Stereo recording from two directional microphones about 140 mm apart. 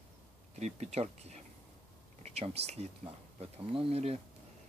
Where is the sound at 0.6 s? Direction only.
55° right (ahead or behind).